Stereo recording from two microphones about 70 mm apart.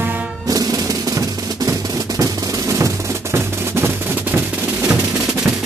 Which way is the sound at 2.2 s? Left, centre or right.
Right.